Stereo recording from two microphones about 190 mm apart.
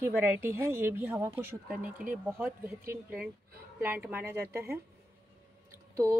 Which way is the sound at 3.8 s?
10° right (ahead or behind).